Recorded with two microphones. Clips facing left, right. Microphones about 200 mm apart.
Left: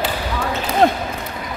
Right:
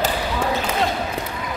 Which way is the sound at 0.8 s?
55° left (ahead or behind).